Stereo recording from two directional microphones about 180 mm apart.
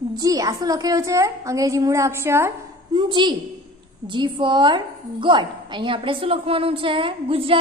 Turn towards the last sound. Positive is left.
turn(degrees=-30)  # may be behind; listen again after turning